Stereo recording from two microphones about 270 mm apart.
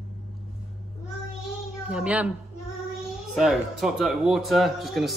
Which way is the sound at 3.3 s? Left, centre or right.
Centre.